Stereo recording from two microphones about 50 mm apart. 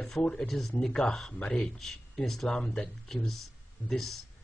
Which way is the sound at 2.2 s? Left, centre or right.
Centre.